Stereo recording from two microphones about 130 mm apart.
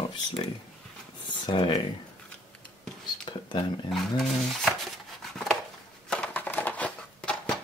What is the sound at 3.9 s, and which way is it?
Speech, centre (ahead or behind).